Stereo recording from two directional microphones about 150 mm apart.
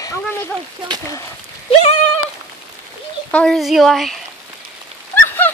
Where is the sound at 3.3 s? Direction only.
5° left (ahead or behind).